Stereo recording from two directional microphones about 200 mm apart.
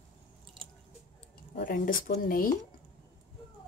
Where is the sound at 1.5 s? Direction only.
45° left (ahead or behind).